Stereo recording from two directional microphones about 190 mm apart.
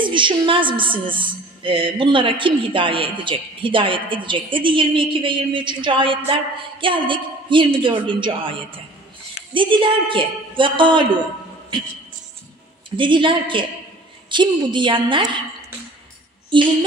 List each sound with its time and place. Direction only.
0.0 s a woman's voice: 25° right (ahead or behind)
12.9 s a woman's voice: 25° right (ahead or behind)
16.4 s a sound: 25° right (ahead or behind)